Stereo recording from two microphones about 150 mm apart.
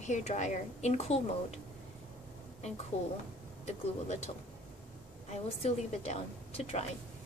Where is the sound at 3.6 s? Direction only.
45° left (ahead or behind).